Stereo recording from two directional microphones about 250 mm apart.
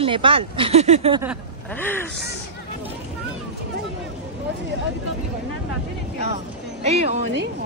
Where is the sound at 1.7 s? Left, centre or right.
Centre.